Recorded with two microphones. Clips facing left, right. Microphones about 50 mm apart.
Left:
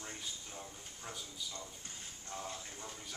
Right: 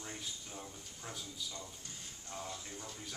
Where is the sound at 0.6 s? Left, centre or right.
Centre.